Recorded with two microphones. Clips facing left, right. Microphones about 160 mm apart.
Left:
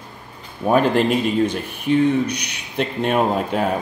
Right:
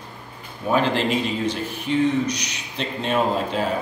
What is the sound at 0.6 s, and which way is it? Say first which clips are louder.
Speech: left 4 dB; 50° left (ahead or behind).